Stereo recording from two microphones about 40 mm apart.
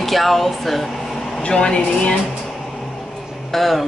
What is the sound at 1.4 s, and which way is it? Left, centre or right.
Speech, left.